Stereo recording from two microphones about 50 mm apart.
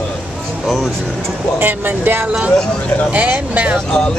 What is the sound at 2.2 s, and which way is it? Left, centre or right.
Speech, right.